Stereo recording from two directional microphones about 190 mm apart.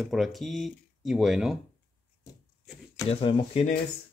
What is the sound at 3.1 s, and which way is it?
Speech, 30° left (ahead or behind).